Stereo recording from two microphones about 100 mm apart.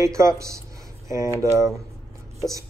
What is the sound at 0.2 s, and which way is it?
Speech, 30° right (ahead or behind).